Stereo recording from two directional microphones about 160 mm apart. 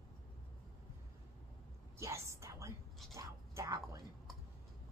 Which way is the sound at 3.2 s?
20° right (ahead or behind).